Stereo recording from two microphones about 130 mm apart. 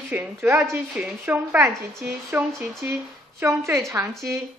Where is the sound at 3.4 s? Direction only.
20° right (ahead or behind).